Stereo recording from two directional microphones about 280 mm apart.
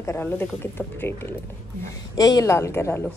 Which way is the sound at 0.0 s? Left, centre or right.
Centre.